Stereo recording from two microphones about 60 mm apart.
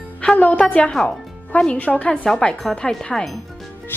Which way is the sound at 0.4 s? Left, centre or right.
Left.